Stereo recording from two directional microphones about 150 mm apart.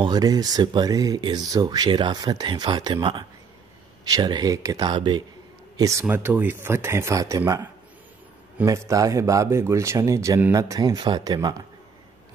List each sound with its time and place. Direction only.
0.0 s speech: 25° right (ahead or behind)
5.8 s speech: 20° right (ahead or behind)
8.6 s speech: 20° right (ahead or behind)